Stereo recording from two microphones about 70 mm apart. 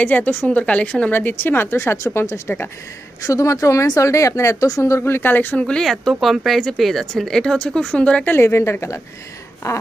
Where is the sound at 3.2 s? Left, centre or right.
Left.